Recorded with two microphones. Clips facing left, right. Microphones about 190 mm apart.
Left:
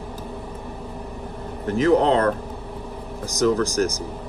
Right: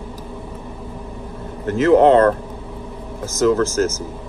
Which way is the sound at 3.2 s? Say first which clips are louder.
Right 4 dB; 15° left (ahead or behind).